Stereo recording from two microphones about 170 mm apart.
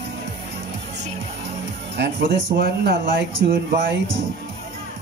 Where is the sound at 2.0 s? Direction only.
75° right (ahead or behind); by 3.5 s 90° right.